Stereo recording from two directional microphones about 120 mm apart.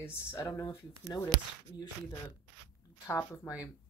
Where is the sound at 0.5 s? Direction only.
40° left (ahead or behind).